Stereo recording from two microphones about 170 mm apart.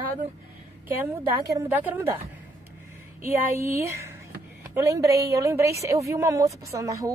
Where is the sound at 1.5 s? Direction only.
10° right (ahead or behind).